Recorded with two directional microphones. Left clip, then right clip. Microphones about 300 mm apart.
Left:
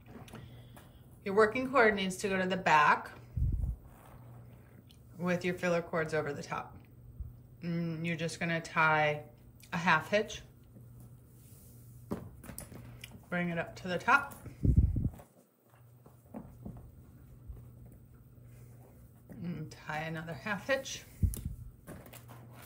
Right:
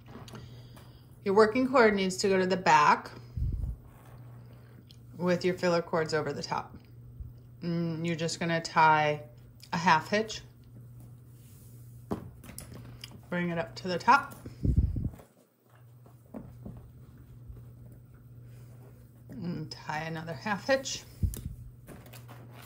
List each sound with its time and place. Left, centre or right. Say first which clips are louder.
0.1 s printer: right 3 dB; centre
1.2 s speech: right 4 dB; centre
5.2 s speech: right 5 dB; centre
7.6 s speech: right 4 dB; centre
12.1 s typing: right 4 dB; centre
16.6 s a sound: right 1 dB; centre
19.2 s a sound: right 5 dB; centre